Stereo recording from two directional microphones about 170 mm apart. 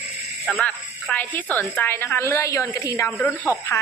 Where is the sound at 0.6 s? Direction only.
10° left (ahead or behind).